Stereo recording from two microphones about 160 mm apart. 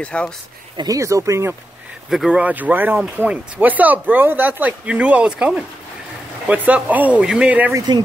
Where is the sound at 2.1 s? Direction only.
5° right (ahead or behind).